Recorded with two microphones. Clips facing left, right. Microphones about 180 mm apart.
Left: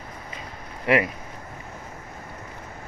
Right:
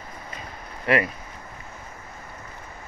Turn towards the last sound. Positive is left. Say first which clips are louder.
# left 1 dB
turn(degrees=15)  # may be behind; listen again after turning